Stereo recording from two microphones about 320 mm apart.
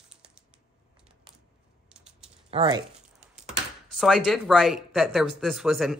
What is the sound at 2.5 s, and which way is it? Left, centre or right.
Speech, centre.